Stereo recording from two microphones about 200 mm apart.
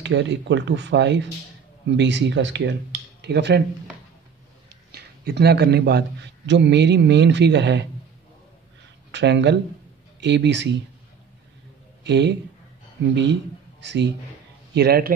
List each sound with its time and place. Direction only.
0.0 s a man's voice: 60° right (ahead or behind)
4.9 s a man's voice: 55° right (ahead or behind)
9.1 s a man's voice: 60° right (ahead or behind)
12.0 s a man's voice: 60° right (ahead or behind)